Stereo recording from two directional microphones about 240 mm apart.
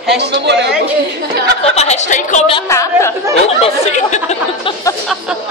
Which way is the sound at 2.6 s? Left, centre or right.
Centre.